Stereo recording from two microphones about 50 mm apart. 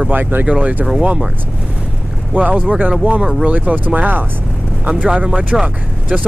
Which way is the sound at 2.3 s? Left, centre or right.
Right.